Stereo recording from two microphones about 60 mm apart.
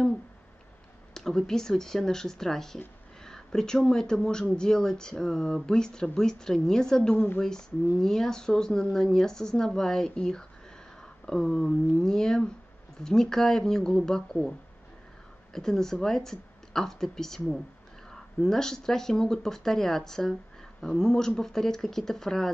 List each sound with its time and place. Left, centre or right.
1.1 s speech: centre
15.5 s speech: centre